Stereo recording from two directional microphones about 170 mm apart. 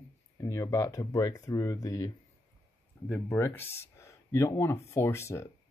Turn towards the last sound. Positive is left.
turn(degrees=15)  # may be behind; listen again after turning